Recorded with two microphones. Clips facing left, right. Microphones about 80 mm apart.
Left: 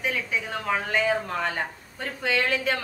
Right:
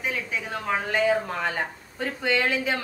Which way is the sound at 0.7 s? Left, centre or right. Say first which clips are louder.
Right 2 dB; centre.